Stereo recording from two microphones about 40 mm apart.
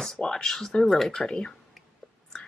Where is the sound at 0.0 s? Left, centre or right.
Centre.